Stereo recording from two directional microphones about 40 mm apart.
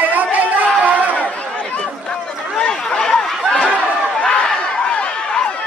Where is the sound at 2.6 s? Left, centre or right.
Centre.